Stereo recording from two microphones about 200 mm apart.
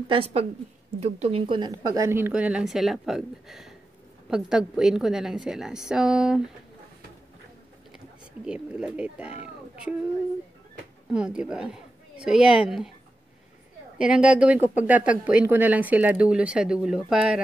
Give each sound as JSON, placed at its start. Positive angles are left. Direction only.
{"t": 0.1, "sound": "a woman's voice", "side_deg": -30}
{"t": 8.5, "sound": "a woman's voice", "side_deg": -5}
{"t": 11.1, "sound": "a woman's voice", "side_deg": -5}
{"t": 13.9, "sound": "a woman's voice", "side_deg": -5}